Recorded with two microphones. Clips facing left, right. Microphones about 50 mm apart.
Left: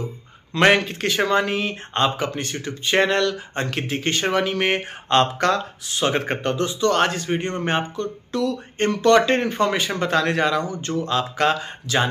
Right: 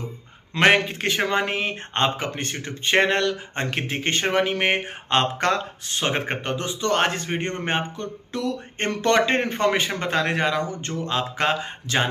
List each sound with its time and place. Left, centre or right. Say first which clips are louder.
0.6 s a man's voice: left 1 dB; centre
5.4 s speech: left 2 dB; right
6.1 s a man's voice: left 4 dB; centre; by 9.2 s right
9.2 s a man's voice: left 1 dB; right